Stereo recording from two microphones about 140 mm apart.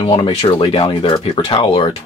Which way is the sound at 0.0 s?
40° left (ahead or behind).